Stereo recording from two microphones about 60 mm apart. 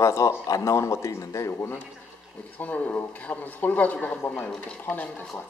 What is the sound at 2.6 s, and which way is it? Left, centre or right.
Speech, left.